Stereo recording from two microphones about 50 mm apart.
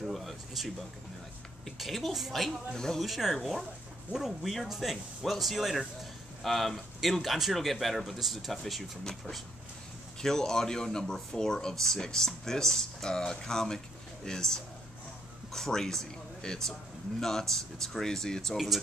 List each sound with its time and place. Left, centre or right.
0.0 s speech: centre
3.0 s speech: centre
10.2 s speech: centre